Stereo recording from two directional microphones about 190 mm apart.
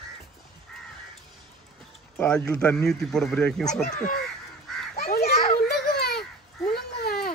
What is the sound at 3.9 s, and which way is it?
Speech, 45° left (ahead or behind).